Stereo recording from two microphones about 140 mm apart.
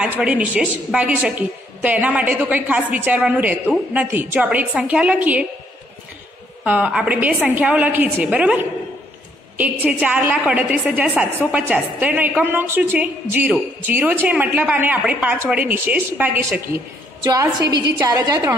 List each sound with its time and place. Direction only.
0.0 s a woman's voice: 10° right (ahead or behind)
6.6 s a woman's voice: 10° right (ahead or behind)
17.2 s a woman's voice: 25° right (ahead or behind)